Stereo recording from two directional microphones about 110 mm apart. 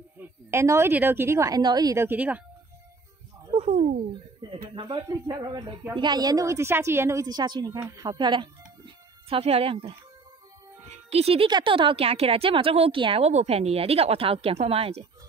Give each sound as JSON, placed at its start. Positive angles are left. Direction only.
{"t": 0.2, "sound": "speech", "side_deg": -25}
{"t": 1.6, "sound": "speech", "side_deg": -40}
{"t": 2.0, "sound": "speech", "side_deg": -15}
{"t": 3.5, "sound": "a sound", "side_deg": -90}
{"t": 4.4, "sound": "speech", "side_deg": -50}
{"t": 4.9, "sound": "speech", "side_deg": -40}
{"t": 7.2, "sound": "speech", "side_deg": -40}
{"t": 9.3, "sound": "speech", "side_deg": -60}
{"t": 10.9, "sound": "music", "side_deg": -70}
{"t": 11.4, "sound": "speech", "side_deg": -50}
{"t": 13.2, "sound": "speech", "side_deg": -85}